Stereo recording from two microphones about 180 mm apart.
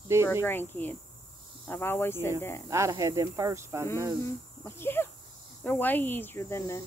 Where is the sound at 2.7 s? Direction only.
15° right (ahead or behind).